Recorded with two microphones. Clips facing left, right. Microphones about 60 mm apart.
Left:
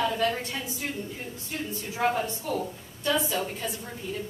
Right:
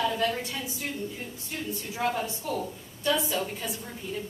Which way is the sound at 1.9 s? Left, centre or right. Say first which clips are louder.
Left 3 dB; centre.